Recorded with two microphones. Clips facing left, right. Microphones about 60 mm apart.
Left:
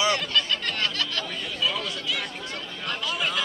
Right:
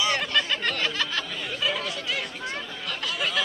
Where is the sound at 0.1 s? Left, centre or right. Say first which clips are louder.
Even; right.